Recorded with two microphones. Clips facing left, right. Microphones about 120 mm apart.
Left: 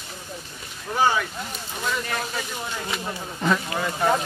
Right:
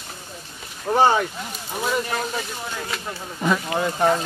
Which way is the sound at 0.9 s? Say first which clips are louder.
Right 4 dB; 35° right (ahead or behind).